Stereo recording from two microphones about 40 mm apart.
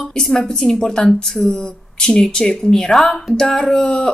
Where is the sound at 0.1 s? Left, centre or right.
Centre.